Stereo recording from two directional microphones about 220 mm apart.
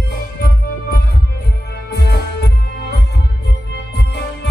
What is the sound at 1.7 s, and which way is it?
Music, 45° left (ahead or behind).